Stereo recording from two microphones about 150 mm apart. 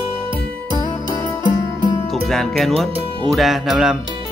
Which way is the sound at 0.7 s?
30° left (ahead or behind).